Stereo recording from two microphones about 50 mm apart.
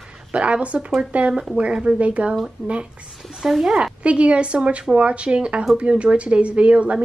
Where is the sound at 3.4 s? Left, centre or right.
Centre.